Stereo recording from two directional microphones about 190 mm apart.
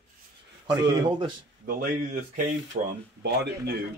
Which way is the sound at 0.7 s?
20° right (ahead or behind).